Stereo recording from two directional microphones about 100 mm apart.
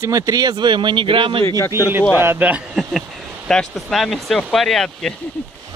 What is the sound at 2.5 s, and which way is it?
Speech, 5° right (ahead or behind).